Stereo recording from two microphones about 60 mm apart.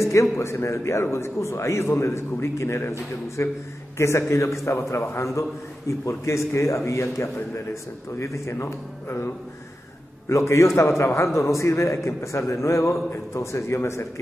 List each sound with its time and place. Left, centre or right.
0.0 s a man's voice: left